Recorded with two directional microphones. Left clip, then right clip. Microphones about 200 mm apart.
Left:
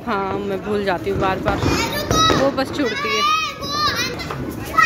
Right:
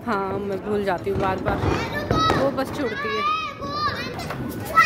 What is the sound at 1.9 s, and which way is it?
Children playing, 55° left (ahead or behind).